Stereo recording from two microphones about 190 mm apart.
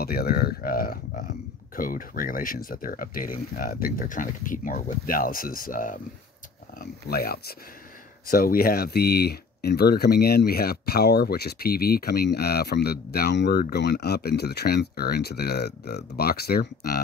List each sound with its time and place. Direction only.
0.0 s speech: 55° left (ahead or behind)